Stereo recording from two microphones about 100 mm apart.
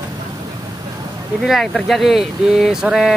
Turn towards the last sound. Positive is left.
turn(degrees=-5)  # may be behind; listen again after turning